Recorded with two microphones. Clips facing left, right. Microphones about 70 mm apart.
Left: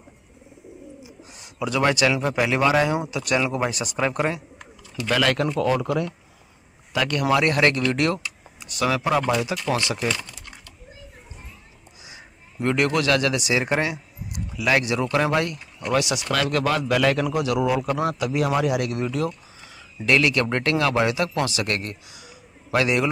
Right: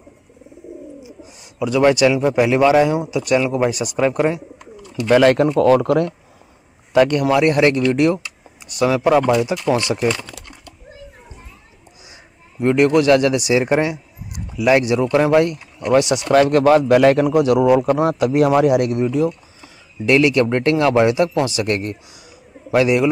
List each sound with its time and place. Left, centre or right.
1.2 s a man's voice: centre
5.0 s speech: right
5.6 s speech: right
7.4 s a man's voice: centre
12.5 s speech: centre; by 18.9 s right
18.9 s a man's voice: centre